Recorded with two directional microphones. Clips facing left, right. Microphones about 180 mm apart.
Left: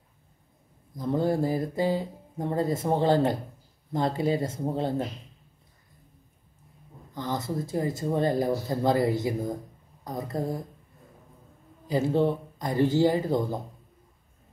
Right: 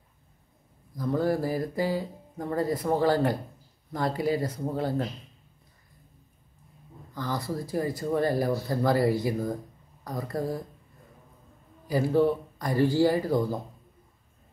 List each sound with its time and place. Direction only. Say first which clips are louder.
0.9 s speech: left 1 dB; 25° left (ahead or behind)
7.2 s speech: left 1 dB; 20° left (ahead or behind)
11.9 s speech: right 1 dB; 25° left (ahead or behind)